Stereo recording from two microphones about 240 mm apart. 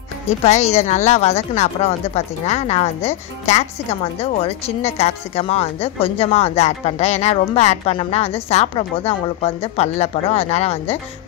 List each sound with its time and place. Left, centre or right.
0.4 s speech: left